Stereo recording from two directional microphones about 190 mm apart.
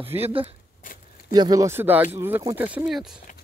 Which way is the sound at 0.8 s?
45° left (ahead or behind).